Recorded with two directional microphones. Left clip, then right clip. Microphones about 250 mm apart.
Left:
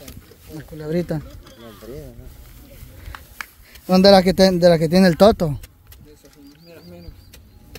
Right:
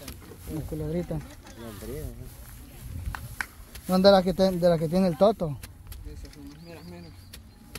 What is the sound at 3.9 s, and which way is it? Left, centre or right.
Speech, left.